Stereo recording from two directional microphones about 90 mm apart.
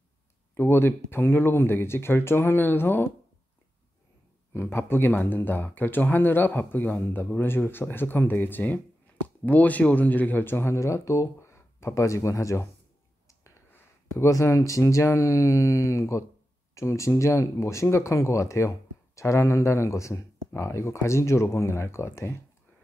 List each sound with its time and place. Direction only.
0.6 s speech: 25° left (ahead or behind)
4.6 s speech: 25° left (ahead or behind)
14.1 s speech: 35° left (ahead or behind)